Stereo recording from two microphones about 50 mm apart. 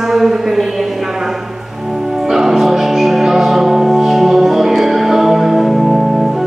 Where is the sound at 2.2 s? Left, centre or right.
Centre.